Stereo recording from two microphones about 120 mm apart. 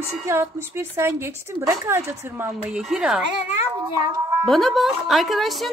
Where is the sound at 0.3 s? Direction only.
20° right (ahead or behind).